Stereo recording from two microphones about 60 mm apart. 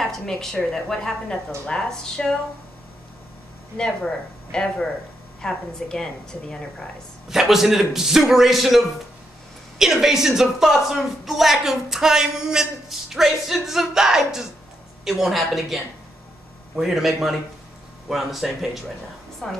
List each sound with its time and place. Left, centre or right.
0.0 s a woman's voice: centre
3.7 s a woman's voice: centre
7.2 s a man's voice: centre
19.4 s a woman's voice: centre